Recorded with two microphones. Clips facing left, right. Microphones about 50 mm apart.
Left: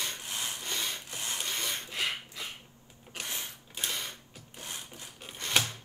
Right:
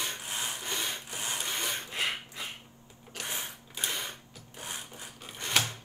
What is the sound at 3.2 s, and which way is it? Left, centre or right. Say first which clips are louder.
Sewing machine: right 2 dB; right.